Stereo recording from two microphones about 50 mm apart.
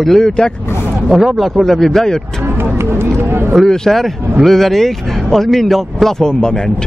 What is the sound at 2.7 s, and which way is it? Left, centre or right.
Speech, right.